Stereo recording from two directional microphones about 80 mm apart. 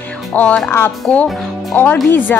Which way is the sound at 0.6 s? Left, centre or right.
Left.